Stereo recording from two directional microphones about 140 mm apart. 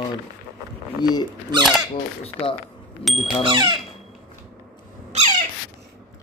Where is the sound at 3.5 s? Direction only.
35° right (ahead or behind).